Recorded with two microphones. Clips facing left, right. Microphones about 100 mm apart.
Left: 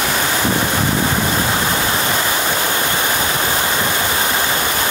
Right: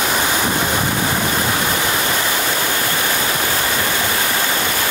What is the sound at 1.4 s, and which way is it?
Waterfall, 20° left (ahead or behind).